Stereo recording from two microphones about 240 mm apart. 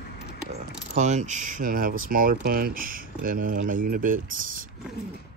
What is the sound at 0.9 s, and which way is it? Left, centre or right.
Speech, right.